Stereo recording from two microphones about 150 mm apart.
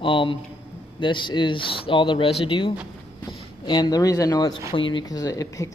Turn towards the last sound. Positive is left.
turn(degrees=20)  # may be behind; listen again after turning